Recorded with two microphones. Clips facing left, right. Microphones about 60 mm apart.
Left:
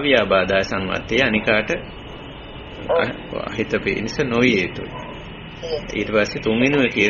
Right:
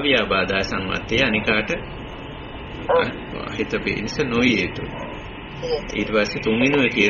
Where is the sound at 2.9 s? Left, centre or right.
Right.